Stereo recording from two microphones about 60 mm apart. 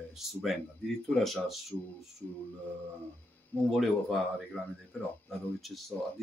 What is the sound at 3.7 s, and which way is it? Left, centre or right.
Speech, centre.